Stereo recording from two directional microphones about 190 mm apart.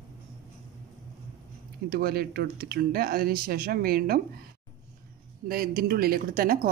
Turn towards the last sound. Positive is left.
turn(degrees=-45)  # may be behind; listen again after turning